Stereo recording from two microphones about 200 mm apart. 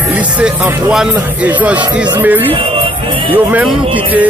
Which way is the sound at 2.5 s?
25° right (ahead or behind).